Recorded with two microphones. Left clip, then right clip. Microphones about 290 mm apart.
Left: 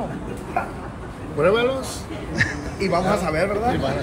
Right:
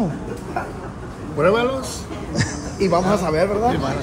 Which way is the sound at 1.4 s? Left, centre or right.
Centre.